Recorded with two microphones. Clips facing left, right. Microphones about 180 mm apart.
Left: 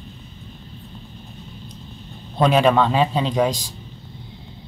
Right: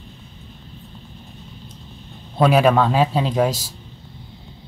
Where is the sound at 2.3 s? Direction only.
5° right (ahead or behind).